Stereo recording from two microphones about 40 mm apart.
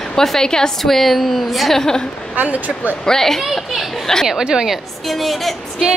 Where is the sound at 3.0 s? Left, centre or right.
Centre.